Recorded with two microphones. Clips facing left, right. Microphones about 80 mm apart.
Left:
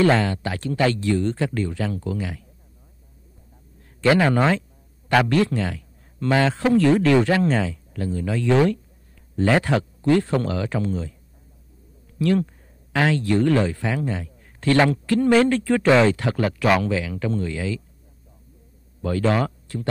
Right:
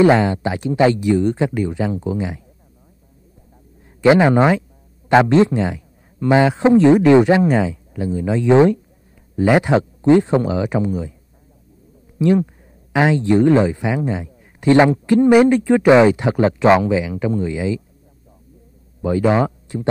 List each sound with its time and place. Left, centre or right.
0.0 s a man's voice: centre
4.0 s a man's voice: centre
12.2 s a man's voice: centre
18.9 s speech: centre